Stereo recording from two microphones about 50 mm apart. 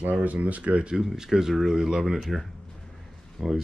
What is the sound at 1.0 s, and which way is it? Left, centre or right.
Speech, centre.